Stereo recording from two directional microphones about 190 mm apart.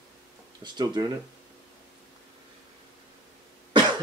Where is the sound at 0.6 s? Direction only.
25° right (ahead or behind).